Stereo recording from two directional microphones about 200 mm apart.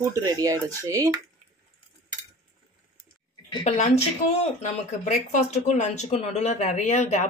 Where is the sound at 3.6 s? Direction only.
35° left (ahead or behind).